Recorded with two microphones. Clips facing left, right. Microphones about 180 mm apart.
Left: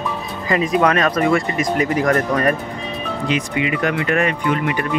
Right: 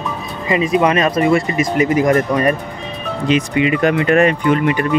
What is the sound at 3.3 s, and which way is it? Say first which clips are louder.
Speech: right 6 dB; 25° right (ahead or behind).